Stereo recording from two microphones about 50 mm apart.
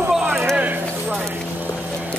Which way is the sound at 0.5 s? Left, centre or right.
Right.